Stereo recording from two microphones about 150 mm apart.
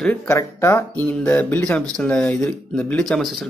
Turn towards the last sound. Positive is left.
turn(degrees=0)  # may be behind; listen again after turning